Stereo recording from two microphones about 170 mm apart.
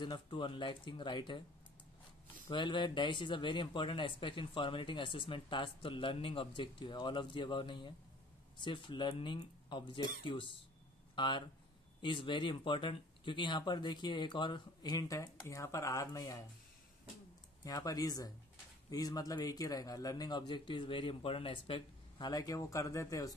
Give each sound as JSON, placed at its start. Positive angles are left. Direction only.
{"t": 0.0, "sound": "speech", "side_deg": 25}
{"t": 2.5, "sound": "speech", "side_deg": 30}
{"t": 17.6, "sound": "speech", "side_deg": 20}
{"t": 22.3, "sound": "speech", "side_deg": 20}